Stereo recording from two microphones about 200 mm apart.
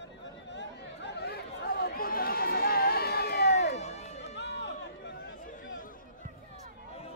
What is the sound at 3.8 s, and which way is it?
Run, 35° left (ahead or behind).